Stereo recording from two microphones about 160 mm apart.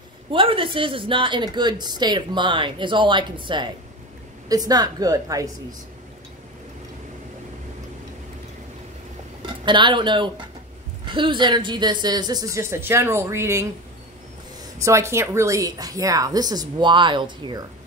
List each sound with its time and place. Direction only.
0.3 s a woman's voice: 35° right (ahead or behind)
9.7 s a woman's voice: 30° right (ahead or behind)
14.8 s a woman's voice: 20° right (ahead or behind)